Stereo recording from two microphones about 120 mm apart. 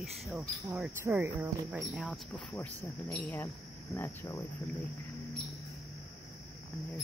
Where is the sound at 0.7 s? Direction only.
10° right (ahead or behind).